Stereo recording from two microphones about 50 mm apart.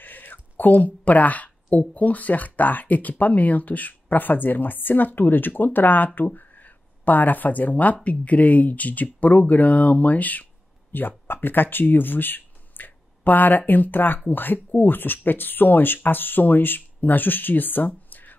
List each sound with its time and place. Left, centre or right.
0.0 s speech: left